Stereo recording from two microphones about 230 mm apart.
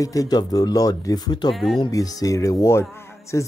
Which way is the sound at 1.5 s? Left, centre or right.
Centre.